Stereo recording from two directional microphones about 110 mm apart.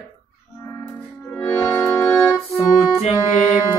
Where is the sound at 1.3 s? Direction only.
20° left (ahead or behind).